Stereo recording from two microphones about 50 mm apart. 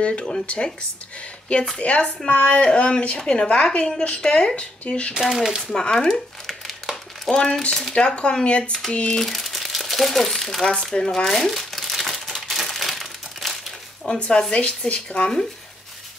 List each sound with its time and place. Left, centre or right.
0.0 s speech: left
1.8 s a woman's voice: left
5.1 s speech: centre
5.6 s a woman's voice: centre
9.2 s speech: centre
10.7 s crumpling: centre
14.1 s speech: centre